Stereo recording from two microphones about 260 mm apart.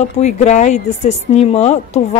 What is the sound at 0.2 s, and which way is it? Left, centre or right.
Speech, left.